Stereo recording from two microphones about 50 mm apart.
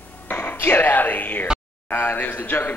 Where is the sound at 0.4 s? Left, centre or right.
Left.